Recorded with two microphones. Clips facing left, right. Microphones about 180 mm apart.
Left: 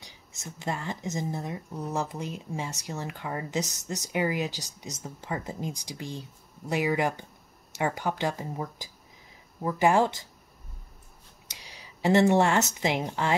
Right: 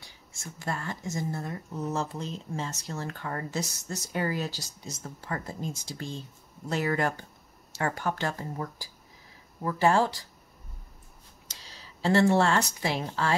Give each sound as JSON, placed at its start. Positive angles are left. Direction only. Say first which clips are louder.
{"t": 0.0, "sound": "speech", "louder": "left 1 dB", "side_deg": 20}
{"t": 11.4, "sound": "speech", "louder": "left 1 dB", "side_deg": 15}